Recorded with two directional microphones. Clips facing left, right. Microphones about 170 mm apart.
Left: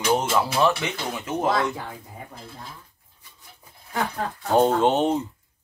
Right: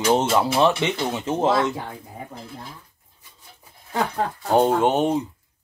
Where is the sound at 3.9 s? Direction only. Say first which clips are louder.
Right 3 dB; 20° right (ahead or behind).